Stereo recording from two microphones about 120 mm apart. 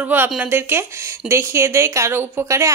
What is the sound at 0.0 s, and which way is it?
Speech, 15° right (ahead or behind).